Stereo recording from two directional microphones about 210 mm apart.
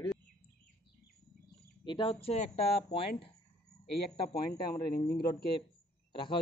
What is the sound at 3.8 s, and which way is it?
A man's voice, 50° left (ahead or behind).